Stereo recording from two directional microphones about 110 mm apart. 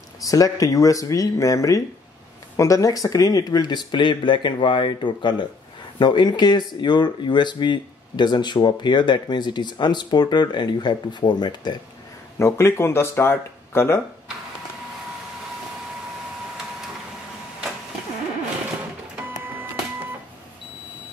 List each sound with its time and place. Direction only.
0.2 s speech: 30° left (ahead or behind)
12.4 s speech: 25° left (ahead or behind)